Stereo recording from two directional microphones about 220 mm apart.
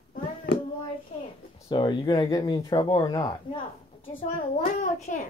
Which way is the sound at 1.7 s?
20° left (ahead or behind).